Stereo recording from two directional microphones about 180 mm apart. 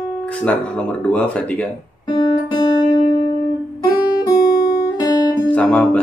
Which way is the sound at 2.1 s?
20° left (ahead or behind).